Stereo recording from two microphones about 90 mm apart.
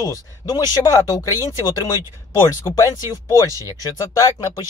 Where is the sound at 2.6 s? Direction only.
35° left (ahead or behind).